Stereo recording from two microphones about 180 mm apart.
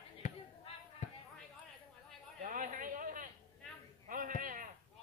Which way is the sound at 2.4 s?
45° right (ahead or behind).